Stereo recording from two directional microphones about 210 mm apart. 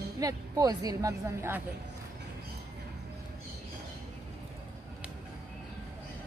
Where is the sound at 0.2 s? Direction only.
15° right (ahead or behind).